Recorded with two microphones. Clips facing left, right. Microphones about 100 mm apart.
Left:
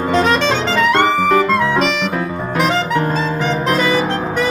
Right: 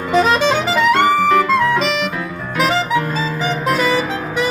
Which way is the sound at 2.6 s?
Centre (ahead or behind).